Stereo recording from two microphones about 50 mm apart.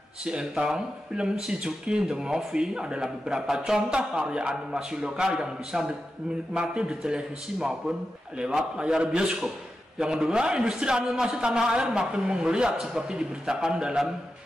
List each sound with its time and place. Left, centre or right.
0.2 s a man's voice: centre
8.7 s a man's voice: centre